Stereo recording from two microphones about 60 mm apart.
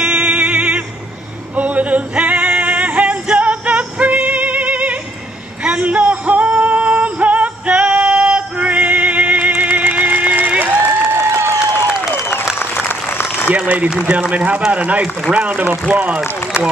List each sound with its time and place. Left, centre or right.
0.0 s music: right
5.6 s male singing: right
11.1 s a sound: right
12.1 s applause: left
13.5 s applause: right
14.3 s speech: right